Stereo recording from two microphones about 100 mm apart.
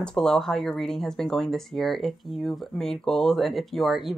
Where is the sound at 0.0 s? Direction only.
5° left (ahead or behind).